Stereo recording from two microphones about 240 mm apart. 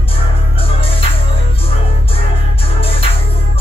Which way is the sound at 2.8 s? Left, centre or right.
Left.